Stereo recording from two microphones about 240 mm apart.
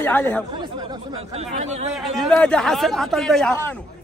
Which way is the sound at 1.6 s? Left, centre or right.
Right.